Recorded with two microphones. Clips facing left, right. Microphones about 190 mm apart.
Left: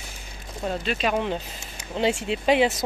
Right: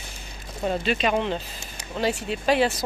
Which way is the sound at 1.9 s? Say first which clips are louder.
Left 2 dB; 20° left (ahead or behind).